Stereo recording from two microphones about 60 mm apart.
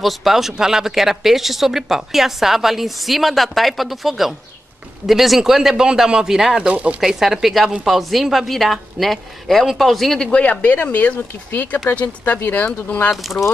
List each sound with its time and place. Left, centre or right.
0.0 s speech: centre
6.7 s speech: right
7.0 s speech: centre
10.4 s speech: left
13.1 s speech: centre